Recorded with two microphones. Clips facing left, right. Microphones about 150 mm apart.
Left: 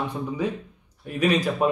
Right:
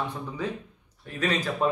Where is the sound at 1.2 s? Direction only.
10° left (ahead or behind).